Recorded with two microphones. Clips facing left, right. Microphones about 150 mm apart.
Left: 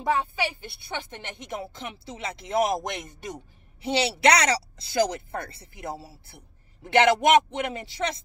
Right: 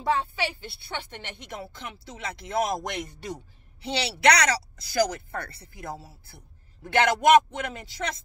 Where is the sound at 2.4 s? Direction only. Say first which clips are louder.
Left 3 dB; 20° left (ahead or behind).